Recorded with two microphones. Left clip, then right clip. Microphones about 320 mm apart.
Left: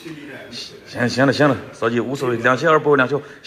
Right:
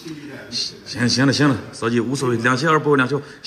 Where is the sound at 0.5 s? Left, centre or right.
Centre.